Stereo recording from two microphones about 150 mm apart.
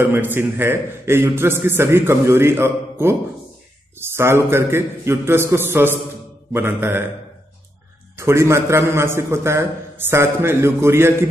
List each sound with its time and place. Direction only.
0.0 s a man's voice: 15° right (ahead or behind)
8.2 s a man's voice: 20° right (ahead or behind)